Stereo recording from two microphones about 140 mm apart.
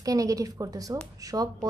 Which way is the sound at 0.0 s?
25° right (ahead or behind).